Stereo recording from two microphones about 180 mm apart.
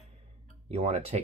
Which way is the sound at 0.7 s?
35° right (ahead or behind).